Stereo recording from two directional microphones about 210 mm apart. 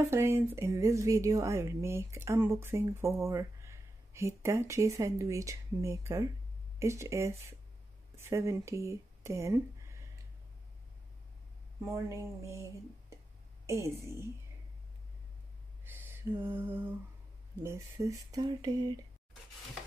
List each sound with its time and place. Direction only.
0.1 s a woman's voice: 10° right (ahead or behind)
11.9 s a woman's voice: 15° right (ahead or behind)
13.7 s a woman's voice: 15° right (ahead or behind)
15.8 s a sound: 10° right (ahead or behind)
17.6 s a woman's voice: 15° right (ahead or behind)